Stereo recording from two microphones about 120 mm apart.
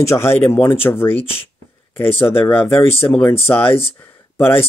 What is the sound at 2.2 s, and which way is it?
Speech, 15° left (ahead or behind).